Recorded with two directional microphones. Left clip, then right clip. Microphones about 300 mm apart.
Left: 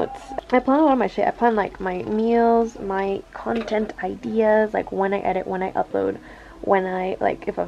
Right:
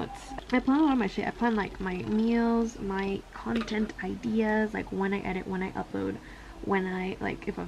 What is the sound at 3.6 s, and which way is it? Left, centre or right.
Speech, centre.